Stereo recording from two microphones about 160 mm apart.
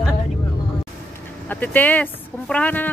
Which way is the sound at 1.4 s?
10° left (ahead or behind).